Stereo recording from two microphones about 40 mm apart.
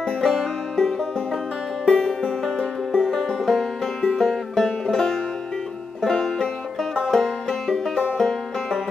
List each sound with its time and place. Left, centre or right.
0.0 s music: centre
3.4 s music: centre
8.0 s banjo: centre